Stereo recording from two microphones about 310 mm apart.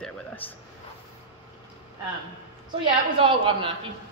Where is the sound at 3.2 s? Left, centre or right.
Centre.